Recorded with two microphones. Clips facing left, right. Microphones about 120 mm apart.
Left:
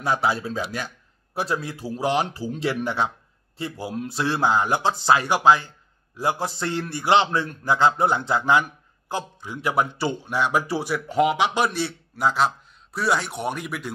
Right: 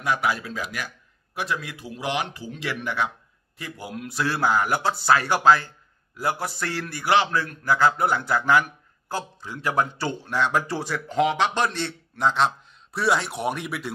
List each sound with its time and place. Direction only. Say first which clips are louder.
0.0 s a man's voice: left 2 dB; 30° left (ahead or behind); by 13.9 s centre (ahead or behind)